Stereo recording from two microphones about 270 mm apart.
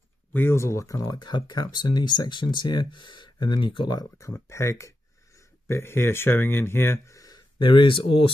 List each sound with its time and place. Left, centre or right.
0.3 s speech: centre